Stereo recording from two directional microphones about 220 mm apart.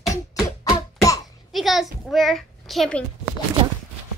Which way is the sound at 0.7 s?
15° left (ahead or behind).